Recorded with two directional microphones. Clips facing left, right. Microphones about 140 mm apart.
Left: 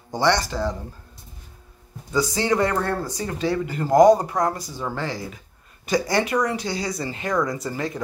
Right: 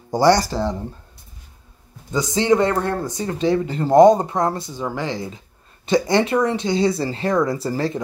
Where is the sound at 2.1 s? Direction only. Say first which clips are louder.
Right 4 dB; 20° right (ahead or behind).